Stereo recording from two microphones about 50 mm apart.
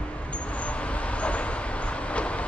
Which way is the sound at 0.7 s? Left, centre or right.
Left.